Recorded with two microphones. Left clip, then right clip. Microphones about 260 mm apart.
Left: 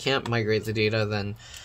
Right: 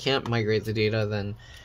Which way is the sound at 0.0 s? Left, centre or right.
Centre.